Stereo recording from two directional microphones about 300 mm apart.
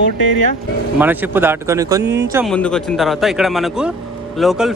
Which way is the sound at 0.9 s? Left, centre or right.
Centre.